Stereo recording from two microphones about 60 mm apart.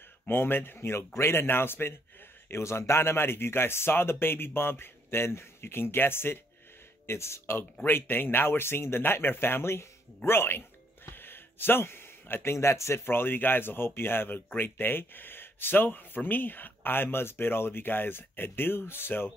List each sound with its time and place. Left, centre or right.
0.3 s speech: left
2.5 s speech: left
11.1 s a sound: left
12.5 s speech: left